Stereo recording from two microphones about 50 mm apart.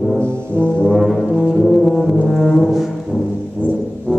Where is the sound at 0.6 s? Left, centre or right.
Right.